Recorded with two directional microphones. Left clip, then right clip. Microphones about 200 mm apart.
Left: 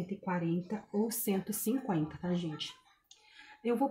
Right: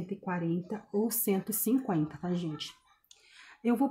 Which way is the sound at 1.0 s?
40° right (ahead or behind).